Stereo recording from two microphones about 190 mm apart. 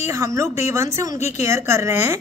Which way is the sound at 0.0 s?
15° right (ahead or behind).